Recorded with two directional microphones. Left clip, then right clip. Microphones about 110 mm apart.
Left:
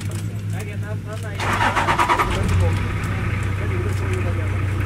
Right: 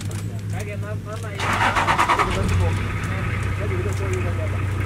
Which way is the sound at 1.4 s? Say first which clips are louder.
Even; 35° right (ahead or behind).